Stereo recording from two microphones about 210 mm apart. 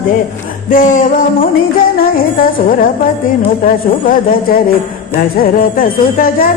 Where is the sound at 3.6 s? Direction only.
40° left (ahead or behind).